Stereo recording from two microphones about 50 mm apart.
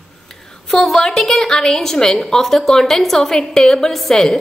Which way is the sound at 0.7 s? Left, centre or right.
Centre.